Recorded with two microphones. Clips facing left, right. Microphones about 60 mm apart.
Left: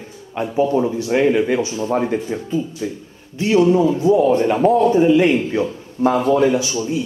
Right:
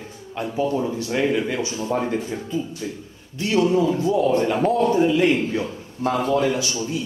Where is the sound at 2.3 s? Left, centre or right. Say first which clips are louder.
Left 4 dB; centre.